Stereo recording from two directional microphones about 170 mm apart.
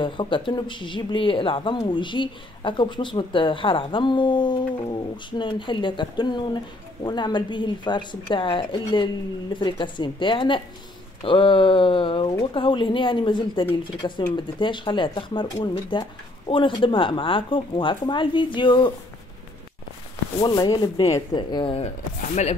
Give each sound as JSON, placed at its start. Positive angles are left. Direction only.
{"t": 0.0, "sound": "speech", "side_deg": 30}
{"t": 20.4, "sound": "speech", "side_deg": 25}